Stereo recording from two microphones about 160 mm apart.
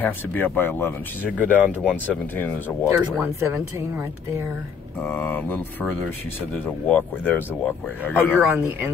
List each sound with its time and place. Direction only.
0.0 s speech: 10° left (ahead or behind)
3.2 s speech: 15° right (ahead or behind)
5.0 s speech: 10° left (ahead or behind)
8.5 s speech: 10° right (ahead or behind)